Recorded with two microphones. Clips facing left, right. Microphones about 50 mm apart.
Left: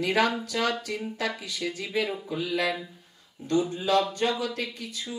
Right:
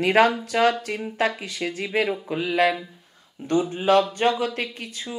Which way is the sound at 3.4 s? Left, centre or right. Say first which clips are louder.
Right 4 dB; right.